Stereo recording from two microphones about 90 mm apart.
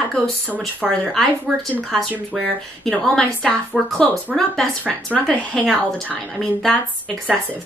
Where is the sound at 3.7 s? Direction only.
10° right (ahead or behind).